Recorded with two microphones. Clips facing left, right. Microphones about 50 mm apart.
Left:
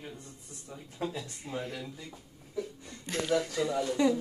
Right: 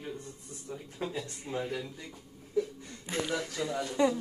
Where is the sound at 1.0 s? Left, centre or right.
Centre.